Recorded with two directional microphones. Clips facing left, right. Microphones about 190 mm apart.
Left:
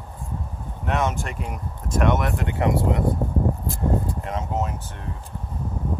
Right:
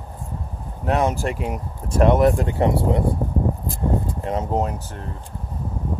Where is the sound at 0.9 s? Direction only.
35° right (ahead or behind).